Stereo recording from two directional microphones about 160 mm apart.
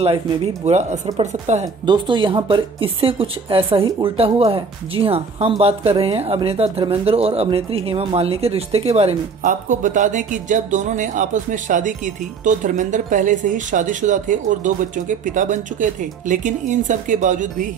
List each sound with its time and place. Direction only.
0.7 s speech: 45° right (ahead or behind)
1.9 s speech: 30° right (ahead or behind)
9.4 s speech: 55° right (ahead or behind)